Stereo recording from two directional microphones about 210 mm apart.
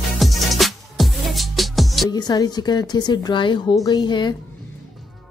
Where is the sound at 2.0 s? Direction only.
20° left (ahead or behind).